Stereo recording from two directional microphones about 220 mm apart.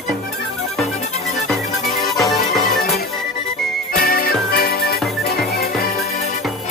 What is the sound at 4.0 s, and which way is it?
Music, 40° left (ahead or behind).